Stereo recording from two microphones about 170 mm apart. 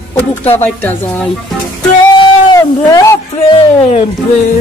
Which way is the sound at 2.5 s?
20° left (ahead or behind).